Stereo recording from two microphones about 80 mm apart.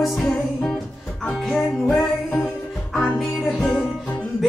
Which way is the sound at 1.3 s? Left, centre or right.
Centre.